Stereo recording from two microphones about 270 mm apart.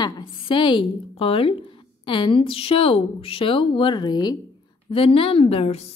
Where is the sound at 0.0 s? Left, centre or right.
Centre.